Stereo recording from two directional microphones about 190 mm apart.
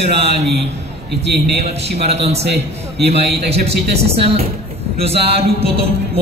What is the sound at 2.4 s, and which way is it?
Speech, 65° right (ahead or behind).